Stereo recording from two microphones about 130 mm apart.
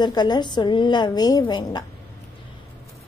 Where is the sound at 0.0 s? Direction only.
35° left (ahead or behind).